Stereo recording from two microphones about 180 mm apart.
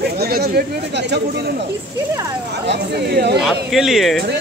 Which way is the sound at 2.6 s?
65° right (ahead or behind).